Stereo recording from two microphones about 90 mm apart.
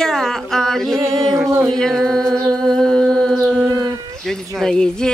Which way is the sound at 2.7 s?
5° left (ahead or behind).